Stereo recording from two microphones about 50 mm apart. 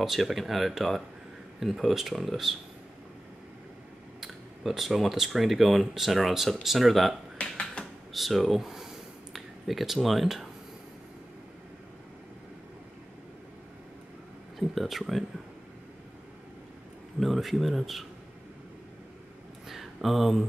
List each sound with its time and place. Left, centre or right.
0.0 s speech: centre
4.2 s speech: centre
7.5 s a sound: centre
8.1 s speech: centre
14.6 s speech: centre
17.2 s speech: centre
19.7 s a sound: centre